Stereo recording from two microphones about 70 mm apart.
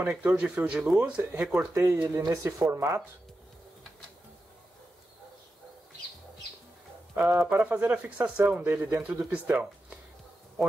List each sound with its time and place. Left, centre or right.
0.1 s speech: centre
1.7 s speech: right
7.2 s speech: right
7.4 s speech: right